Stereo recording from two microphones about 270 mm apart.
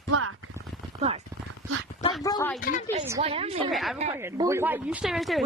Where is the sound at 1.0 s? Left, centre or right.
Right.